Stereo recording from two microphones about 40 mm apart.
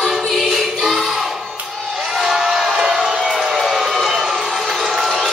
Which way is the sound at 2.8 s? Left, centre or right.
Centre.